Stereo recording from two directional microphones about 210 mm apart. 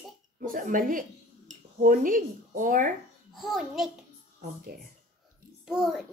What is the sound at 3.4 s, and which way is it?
Speech, centre (ahead or behind).